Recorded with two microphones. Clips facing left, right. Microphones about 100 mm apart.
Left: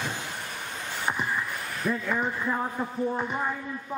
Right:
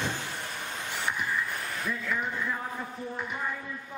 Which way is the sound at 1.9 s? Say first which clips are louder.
Left 5 dB; 35° left (ahead or behind).